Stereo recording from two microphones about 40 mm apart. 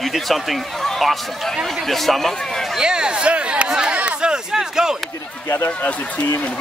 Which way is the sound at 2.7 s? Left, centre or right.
Right.